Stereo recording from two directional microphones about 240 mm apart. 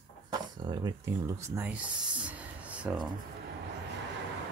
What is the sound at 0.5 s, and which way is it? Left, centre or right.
Speech, centre.